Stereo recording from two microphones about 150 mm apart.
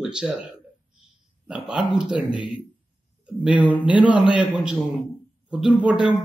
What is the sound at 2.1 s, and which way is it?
Speech, 35° left (ahead or behind).